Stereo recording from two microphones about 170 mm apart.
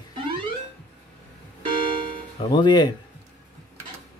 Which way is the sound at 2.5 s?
25° left (ahead or behind).